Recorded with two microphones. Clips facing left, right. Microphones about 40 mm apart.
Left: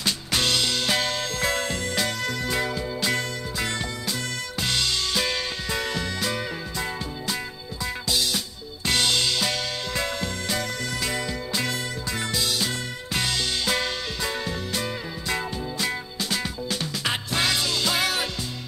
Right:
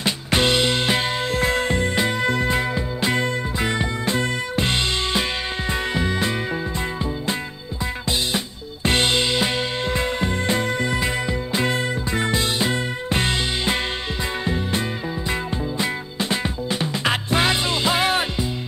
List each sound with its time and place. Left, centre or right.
0.0 s music: right
8.8 s music: right